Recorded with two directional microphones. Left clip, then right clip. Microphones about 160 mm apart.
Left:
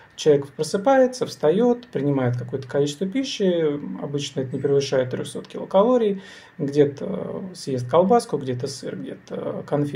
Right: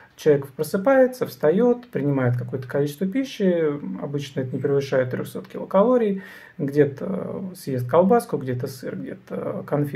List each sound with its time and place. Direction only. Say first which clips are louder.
0.2 s speech: left 1 dB; 5° right (ahead or behind)